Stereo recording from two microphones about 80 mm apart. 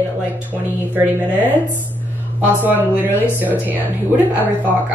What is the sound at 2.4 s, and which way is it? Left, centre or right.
Speech, right.